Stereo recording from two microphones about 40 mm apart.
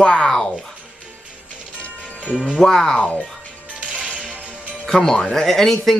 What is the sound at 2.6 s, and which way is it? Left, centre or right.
Speech, centre.